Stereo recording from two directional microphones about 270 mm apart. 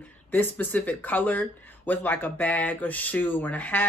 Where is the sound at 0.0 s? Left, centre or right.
Centre.